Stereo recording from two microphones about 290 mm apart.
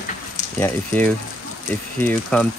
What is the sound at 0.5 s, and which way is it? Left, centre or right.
Speech, centre.